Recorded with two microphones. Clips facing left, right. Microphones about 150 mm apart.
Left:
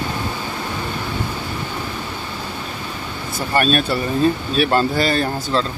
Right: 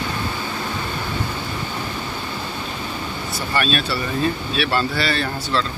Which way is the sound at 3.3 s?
45° left (ahead or behind).